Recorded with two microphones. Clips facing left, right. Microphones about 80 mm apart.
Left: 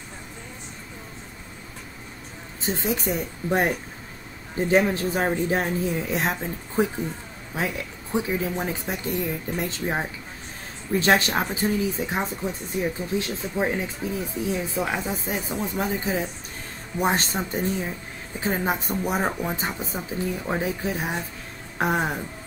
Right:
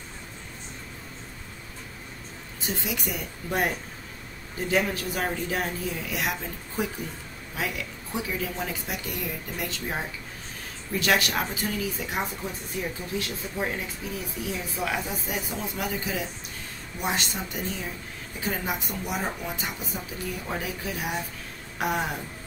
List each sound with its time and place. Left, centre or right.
2.6 s speech: left